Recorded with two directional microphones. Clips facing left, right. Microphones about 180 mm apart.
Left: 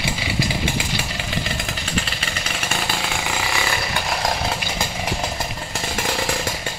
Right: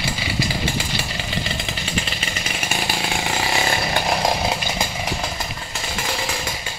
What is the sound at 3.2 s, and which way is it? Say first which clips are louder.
Chainsaw: right 2 dB; 35° right (ahead or behind).